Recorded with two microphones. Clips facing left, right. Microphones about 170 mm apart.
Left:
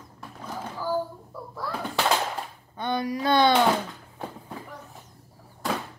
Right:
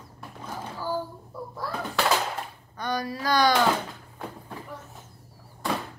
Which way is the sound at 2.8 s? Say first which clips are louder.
Left 3 dB; 25° left (ahead or behind).